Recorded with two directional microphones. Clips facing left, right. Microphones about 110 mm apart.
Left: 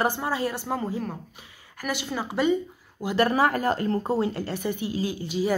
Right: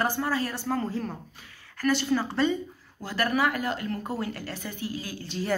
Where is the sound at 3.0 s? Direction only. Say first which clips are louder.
Left 4 dB; 25° left (ahead or behind).